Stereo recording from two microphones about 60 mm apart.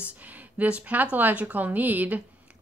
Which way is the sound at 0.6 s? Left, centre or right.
Right.